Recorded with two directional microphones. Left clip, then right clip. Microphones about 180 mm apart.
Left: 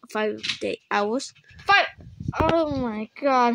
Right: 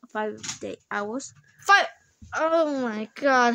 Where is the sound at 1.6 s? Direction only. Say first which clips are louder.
Even; 15° right (ahead or behind).